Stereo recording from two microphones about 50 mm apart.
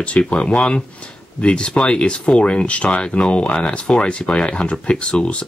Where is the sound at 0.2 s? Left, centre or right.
Left.